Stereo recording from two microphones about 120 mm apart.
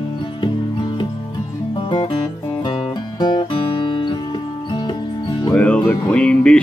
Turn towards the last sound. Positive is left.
turn(degrees=10)  # may be behind; listen again after turning